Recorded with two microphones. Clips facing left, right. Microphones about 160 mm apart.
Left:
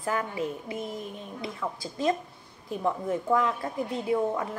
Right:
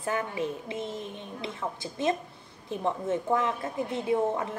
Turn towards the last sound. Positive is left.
turn(degrees=-25)  # may be behind; listen again after turning